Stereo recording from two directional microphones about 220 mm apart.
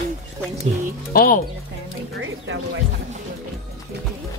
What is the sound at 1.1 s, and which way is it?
Speech, 40° left (ahead or behind).